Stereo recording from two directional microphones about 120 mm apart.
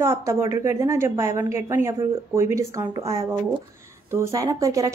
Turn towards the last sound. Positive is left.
turn(degrees=-30)  # may be behind; listen again after turning